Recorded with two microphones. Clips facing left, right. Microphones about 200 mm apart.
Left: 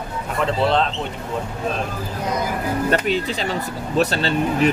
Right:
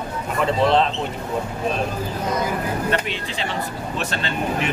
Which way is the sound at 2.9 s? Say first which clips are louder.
Left 4 dB; 40° left (ahead or behind).